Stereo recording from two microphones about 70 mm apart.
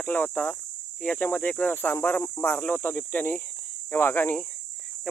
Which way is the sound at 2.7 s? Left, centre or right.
Left.